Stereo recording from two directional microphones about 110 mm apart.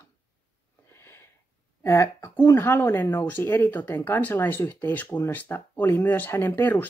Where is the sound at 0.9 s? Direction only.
20° left (ahead or behind).